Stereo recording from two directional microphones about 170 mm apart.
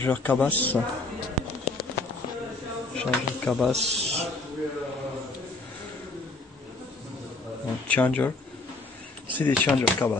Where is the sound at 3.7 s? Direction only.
40° right (ahead or behind).